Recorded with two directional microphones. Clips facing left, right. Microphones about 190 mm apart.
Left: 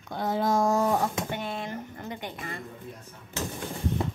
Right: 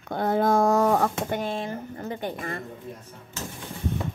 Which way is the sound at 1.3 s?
30° right (ahead or behind).